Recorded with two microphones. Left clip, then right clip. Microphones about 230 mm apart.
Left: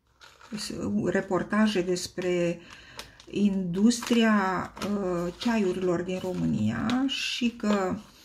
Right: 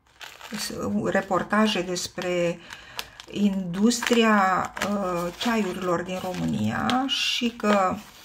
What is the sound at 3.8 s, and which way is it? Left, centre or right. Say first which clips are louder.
Speech: right 4 dB; centre.